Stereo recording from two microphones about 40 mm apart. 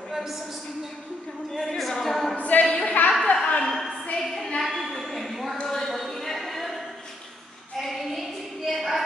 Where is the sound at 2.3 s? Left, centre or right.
Left.